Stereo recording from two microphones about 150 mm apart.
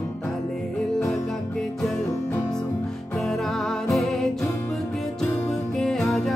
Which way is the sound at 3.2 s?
Centre (ahead or behind).